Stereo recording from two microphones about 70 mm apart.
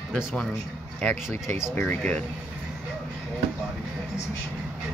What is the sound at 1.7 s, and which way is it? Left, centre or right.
Speech, left.